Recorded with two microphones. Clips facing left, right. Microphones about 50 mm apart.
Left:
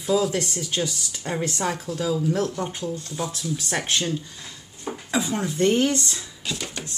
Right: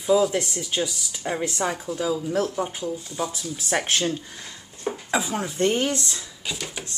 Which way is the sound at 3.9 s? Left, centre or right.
Right.